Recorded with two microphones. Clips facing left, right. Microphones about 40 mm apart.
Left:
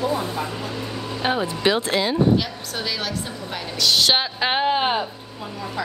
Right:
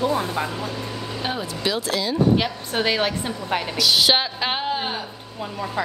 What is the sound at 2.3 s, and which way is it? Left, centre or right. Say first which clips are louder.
A woman's voice: right 3 dB; right.